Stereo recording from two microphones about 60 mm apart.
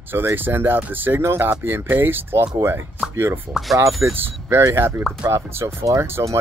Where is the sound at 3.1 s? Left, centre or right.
Right.